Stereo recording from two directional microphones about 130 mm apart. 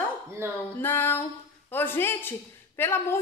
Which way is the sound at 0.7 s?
15° left (ahead or behind).